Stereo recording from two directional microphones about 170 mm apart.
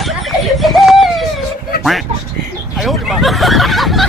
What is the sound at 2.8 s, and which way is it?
Speech, centre (ahead or behind).